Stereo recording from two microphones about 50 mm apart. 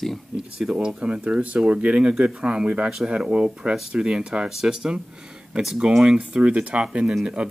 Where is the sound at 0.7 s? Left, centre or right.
Right.